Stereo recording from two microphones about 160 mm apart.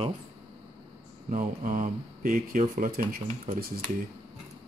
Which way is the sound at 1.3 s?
55° right (ahead or behind).